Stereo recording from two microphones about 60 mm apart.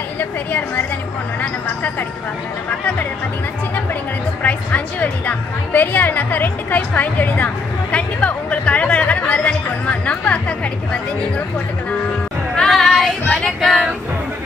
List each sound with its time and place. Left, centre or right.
0.2 s a woman's voice: left
4.4 s a woman's voice: left
12.6 s child singing: centre
13.3 s female singing: centre